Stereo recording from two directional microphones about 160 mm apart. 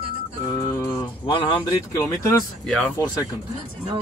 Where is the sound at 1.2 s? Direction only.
30° left (ahead or behind).